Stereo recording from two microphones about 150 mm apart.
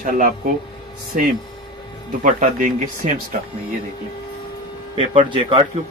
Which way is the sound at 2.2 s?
60° right (ahead or behind).